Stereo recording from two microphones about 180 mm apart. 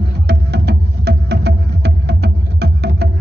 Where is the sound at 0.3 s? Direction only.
65° right (ahead or behind).